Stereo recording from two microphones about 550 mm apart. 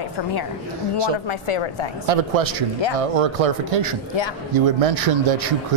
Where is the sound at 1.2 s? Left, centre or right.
Left.